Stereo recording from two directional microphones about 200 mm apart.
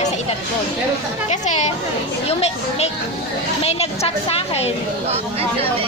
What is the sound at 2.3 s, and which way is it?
A woman's voice, 30° left (ahead or behind).